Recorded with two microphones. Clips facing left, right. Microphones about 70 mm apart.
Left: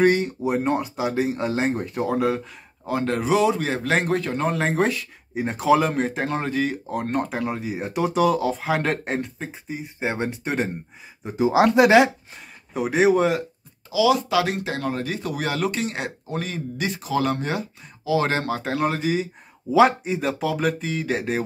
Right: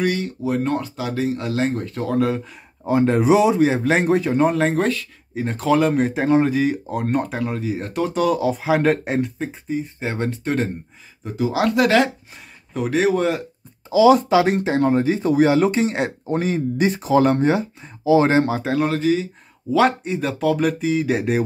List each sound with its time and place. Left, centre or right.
0.0 s speech: left; by 2.4 s centre
2.8 s speech: centre
9.7 s speech: centre
13.8 s speech: right
14.3 s speech: right
18.6 s speech: centre